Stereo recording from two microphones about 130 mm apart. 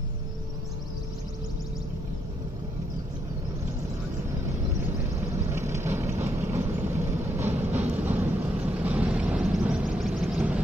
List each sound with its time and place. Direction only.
5.5 s vehicle: 20° right (ahead or behind)